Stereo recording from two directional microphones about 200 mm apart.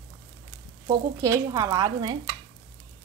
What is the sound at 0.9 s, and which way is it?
Speech, 15° right (ahead or behind).